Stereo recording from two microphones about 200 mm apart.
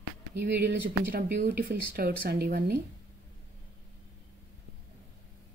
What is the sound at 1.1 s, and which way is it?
Speech, 55° right (ahead or behind).